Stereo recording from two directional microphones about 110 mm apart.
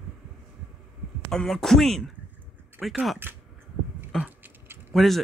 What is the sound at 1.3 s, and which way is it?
Speech, 5° left (ahead or behind).